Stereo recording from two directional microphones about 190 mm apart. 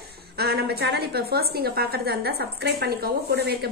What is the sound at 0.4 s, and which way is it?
A woman's voice, 55° right (ahead or behind).